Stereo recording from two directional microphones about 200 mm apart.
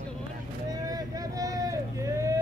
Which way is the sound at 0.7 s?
20° right (ahead or behind).